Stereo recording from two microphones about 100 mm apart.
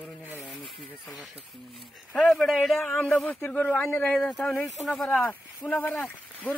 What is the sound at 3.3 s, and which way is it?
Speech, 15° left (ahead or behind).